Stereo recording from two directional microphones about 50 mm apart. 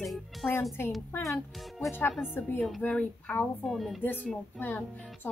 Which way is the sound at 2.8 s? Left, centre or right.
Left.